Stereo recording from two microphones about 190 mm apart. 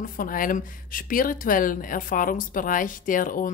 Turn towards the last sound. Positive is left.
turn(degrees=45)  # may be behind; listen again after turning